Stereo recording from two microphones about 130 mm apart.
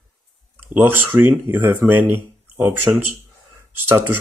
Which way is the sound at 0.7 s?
15° right (ahead or behind).